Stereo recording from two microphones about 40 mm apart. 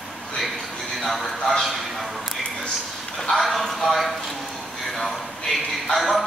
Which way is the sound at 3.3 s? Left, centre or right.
Centre.